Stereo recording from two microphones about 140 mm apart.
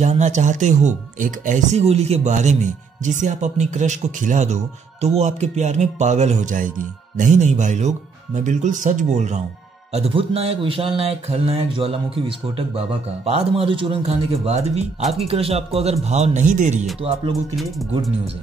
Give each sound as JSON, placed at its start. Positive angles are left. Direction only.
{"t": 0.0, "sound": "speech", "side_deg": -55}
{"t": 9.9, "sound": "speech", "side_deg": -45}
{"t": 17.0, "sound": "speech", "side_deg": -45}